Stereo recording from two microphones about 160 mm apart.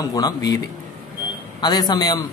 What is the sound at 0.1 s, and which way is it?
Speech, 25° left (ahead or behind).